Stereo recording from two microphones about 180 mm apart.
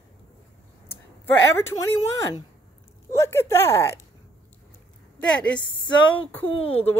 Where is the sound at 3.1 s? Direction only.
15° left (ahead or behind).